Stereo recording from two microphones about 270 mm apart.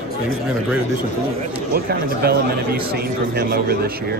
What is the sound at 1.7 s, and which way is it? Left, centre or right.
Speech, right.